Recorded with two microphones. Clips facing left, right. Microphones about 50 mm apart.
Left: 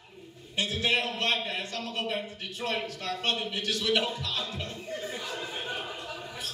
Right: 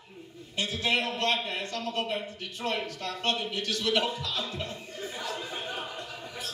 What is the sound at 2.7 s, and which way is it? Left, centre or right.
A man's voice, left.